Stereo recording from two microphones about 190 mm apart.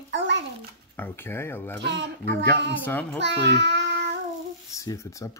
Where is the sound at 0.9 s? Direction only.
10° left (ahead or behind).